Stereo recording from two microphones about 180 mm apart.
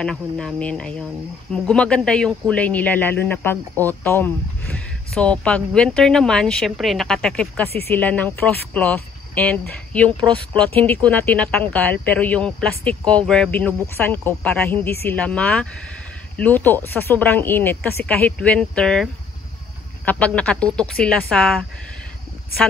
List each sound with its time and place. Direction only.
0.0 s speech: 5° left (ahead or behind)
10.2 s speech: 25° right (ahead or behind)
11.1 s speech: 5° left (ahead or behind)
20.1 s speech: 5° left (ahead or behind)